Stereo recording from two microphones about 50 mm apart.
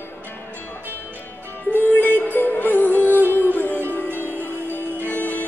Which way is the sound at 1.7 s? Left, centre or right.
Left.